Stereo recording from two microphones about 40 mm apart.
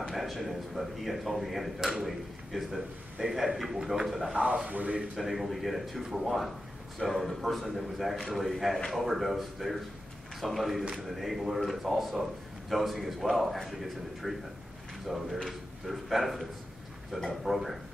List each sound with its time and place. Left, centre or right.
0.1 s a man's voice: centre
4.6 s speech: right
5.1 s a man's voice: centre